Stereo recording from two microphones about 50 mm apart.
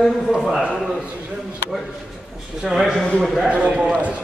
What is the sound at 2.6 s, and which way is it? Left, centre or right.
Speech, centre.